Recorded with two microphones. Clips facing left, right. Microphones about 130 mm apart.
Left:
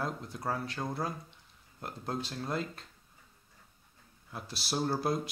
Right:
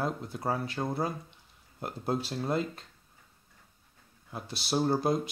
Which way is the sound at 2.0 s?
10° right (ahead or behind).